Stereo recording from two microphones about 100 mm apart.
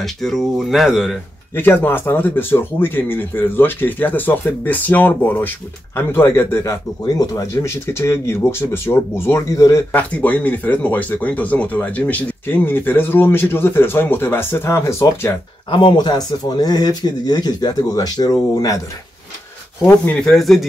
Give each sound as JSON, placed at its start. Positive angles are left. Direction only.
{"t": 0.0, "sound": "speech", "side_deg": 5}
{"t": 1.5, "sound": "speech", "side_deg": 20}
{"t": 9.9, "sound": "speech", "side_deg": 15}
{"t": 15.7, "sound": "speech", "side_deg": 45}
{"t": 20.1, "sound": "speech", "side_deg": 5}